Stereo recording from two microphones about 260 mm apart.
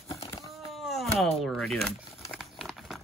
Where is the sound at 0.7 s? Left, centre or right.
Centre.